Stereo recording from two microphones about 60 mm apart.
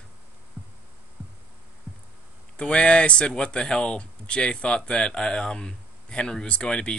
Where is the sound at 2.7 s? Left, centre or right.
Centre.